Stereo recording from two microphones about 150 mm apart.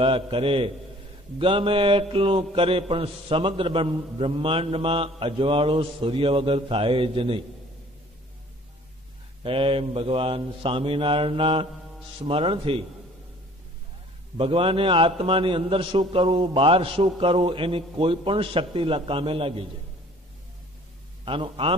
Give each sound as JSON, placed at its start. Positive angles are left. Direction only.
{"t": 0.0, "sound": "a man's voice", "side_deg": -35}
{"t": 9.4, "sound": "a man's voice", "side_deg": -35}
{"t": 14.3, "sound": "a man's voice", "side_deg": -35}
{"t": 21.3, "sound": "a man's voice", "side_deg": -35}